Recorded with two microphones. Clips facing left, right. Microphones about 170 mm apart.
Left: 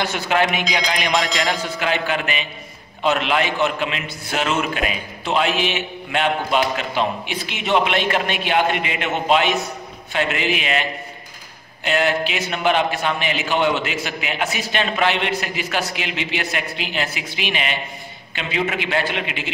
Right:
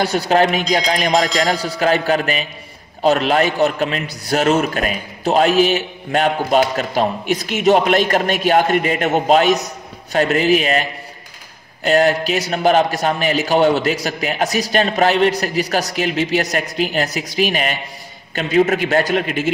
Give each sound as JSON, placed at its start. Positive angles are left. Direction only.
{"t": 0.0, "sound": "a man's voice", "side_deg": -40}
{"t": 1.2, "sound": "a sound", "side_deg": 0}
{"t": 1.5, "sound": "a man's voice", "side_deg": -35}